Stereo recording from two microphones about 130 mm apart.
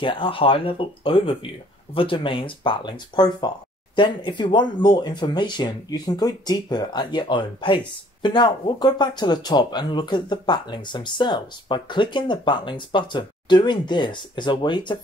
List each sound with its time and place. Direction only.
0.0 s speech: 40° left (ahead or behind)